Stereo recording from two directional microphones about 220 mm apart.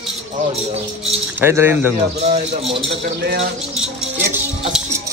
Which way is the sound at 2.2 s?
30° right (ahead or behind).